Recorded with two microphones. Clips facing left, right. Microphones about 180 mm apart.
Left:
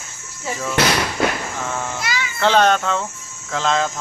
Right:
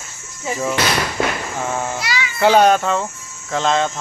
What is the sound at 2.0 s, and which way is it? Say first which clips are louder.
Children playing: right 1 dB; 50° left (ahead or behind).